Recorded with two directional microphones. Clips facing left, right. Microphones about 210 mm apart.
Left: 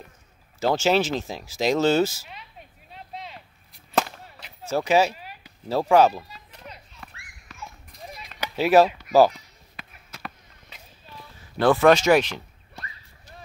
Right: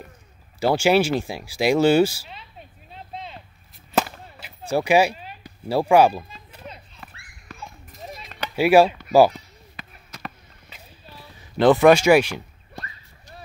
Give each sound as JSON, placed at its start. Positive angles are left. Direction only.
{"t": 0.6, "sound": "speech", "side_deg": -10}
{"t": 2.9, "sound": "a sound", "side_deg": -30}
{"t": 3.7, "sound": "chop", "side_deg": -5}
{"t": 5.7, "sound": "speech", "side_deg": -10}
{"t": 6.7, "sound": "children playing", "side_deg": -25}
{"t": 7.0, "sound": "a sound", "side_deg": -5}
{"t": 8.0, "sound": "a sound", "side_deg": -30}
{"t": 8.5, "sound": "speech", "side_deg": -10}
{"t": 9.8, "sound": "basketball bounce", "side_deg": 0}
{"t": 11.5, "sound": "speech", "side_deg": -20}